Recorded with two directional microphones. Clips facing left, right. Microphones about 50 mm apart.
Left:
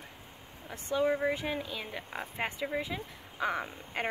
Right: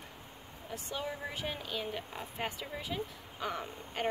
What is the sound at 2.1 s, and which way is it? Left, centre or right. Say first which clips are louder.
Speech: left 3 dB; left.